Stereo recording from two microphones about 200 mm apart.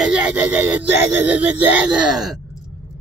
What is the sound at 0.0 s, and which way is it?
Speech, 5° right (ahead or behind).